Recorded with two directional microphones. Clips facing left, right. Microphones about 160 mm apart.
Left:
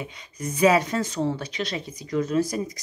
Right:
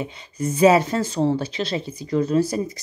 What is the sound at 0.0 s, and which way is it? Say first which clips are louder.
A woman's voice: right 6 dB; 30° right (ahead or behind).